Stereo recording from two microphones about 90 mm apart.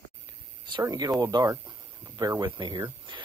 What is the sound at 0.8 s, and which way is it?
Speech, 45° right (ahead or behind).